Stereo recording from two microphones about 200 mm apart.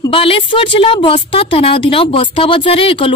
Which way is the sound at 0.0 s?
25° left (ahead or behind).